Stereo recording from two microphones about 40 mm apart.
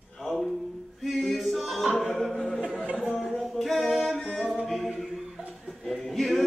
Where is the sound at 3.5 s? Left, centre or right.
Centre.